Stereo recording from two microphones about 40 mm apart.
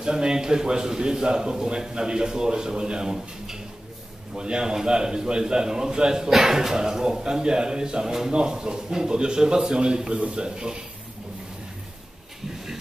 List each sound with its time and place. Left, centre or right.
0.0 s a man's voice: right